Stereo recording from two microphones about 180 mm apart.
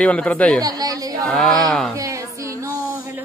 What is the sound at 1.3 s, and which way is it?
Speech, 5° left (ahead or behind).